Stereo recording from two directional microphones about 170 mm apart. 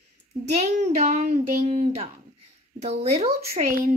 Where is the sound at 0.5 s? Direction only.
40° right (ahead or behind).